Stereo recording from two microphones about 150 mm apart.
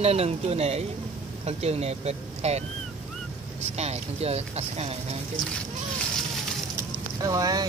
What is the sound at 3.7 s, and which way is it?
Speech, 45° right (ahead or behind).